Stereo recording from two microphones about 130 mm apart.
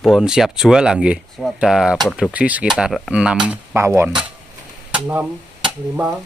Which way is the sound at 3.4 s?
20° right (ahead or behind).